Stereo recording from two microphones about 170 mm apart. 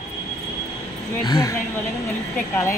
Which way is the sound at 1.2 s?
20° left (ahead or behind).